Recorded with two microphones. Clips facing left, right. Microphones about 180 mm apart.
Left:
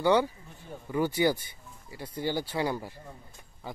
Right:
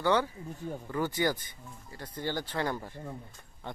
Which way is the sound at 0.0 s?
15° left (ahead or behind).